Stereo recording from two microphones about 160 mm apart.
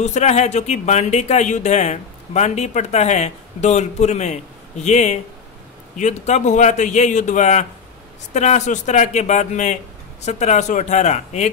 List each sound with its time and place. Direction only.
0.0 s speech: 45° left (ahead or behind)